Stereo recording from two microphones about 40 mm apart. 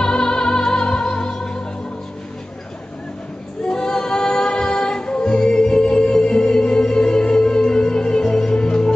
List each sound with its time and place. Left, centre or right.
0.0 s music: centre
3.6 s music: centre